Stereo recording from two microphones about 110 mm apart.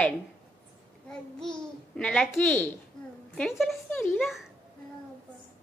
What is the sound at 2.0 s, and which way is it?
A woman's voice, 5° left (ahead or behind).